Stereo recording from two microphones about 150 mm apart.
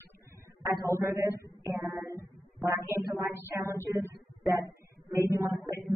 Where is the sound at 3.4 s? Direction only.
15° right (ahead or behind).